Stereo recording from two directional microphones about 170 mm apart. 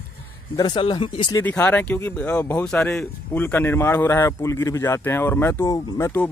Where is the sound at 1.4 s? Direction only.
10° left (ahead or behind).